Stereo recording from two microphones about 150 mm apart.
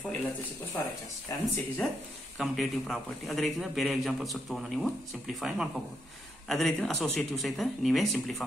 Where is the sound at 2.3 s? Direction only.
Centre (ahead or behind).